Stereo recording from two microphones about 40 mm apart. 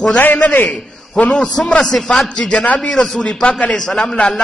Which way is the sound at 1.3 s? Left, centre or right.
Centre.